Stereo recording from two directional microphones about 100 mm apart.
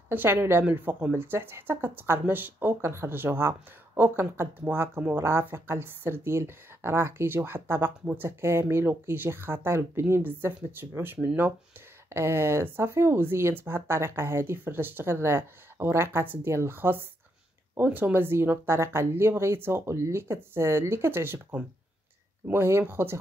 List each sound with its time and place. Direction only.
0.1 s a woman's voice: 20° right (ahead or behind)
12.1 s a woman's voice: 25° right (ahead or behind)